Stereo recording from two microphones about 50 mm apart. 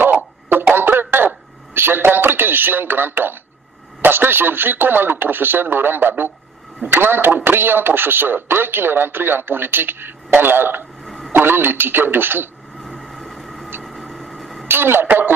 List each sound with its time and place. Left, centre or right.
0.0 s a sound: right
4.0 s a man's voice: right
11.1 s radio: centre
11.3 s a man's voice: right
12.8 s vehicle: centre
13.8 s a sound: centre
14.7 s a man's voice: right